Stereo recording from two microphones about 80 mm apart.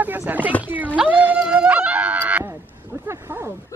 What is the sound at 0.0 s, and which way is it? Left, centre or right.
Speech, right.